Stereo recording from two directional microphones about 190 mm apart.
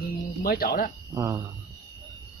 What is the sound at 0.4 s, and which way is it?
Speech, 50° left (ahead or behind).